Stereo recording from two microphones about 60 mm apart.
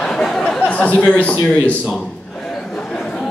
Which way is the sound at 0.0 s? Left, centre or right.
Centre.